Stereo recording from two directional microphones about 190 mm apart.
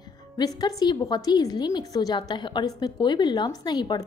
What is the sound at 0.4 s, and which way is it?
A woman's voice, 20° left (ahead or behind).